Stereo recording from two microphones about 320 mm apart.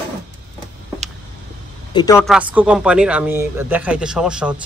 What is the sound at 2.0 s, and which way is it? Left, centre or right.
Speech, centre.